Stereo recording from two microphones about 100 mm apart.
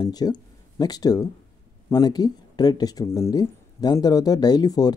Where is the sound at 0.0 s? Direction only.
40° left (ahead or behind).